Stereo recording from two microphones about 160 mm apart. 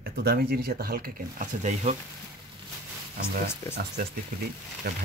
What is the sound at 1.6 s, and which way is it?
Speech, 45° right (ahead or behind).